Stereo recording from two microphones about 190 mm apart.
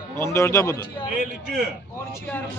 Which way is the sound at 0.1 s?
15° left (ahead or behind).